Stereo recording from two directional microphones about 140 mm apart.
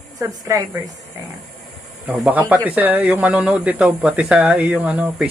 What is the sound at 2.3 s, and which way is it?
Speech, 10° right (ahead or behind).